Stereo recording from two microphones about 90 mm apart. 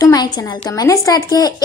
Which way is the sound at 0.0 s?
45° left (ahead or behind).